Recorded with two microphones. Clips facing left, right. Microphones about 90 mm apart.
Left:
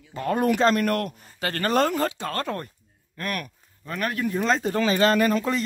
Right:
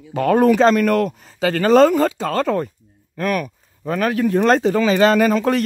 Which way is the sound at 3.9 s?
90° right.